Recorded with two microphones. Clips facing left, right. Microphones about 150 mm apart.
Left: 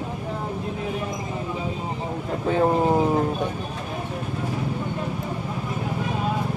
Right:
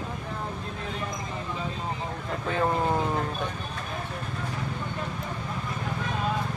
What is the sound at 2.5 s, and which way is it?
Speech, 25° left (ahead or behind).